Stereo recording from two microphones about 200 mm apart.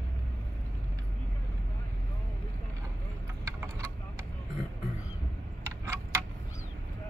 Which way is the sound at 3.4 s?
15° right (ahead or behind).